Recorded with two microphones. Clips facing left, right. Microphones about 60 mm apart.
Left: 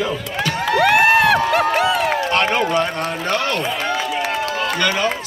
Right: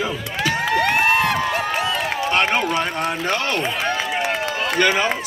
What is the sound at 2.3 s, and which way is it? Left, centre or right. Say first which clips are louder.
A man's voice: right 1 dB; centre.